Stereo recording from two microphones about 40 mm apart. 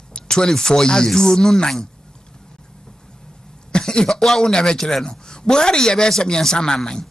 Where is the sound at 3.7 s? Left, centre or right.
Centre.